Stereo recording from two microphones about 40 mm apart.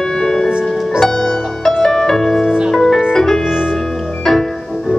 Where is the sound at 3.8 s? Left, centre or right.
Centre.